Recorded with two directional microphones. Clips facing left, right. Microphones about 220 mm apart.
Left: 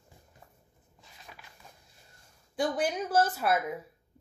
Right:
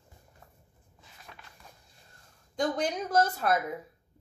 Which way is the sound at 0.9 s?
5° left (ahead or behind).